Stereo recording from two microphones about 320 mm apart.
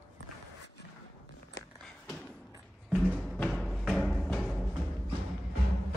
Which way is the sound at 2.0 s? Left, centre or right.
Centre.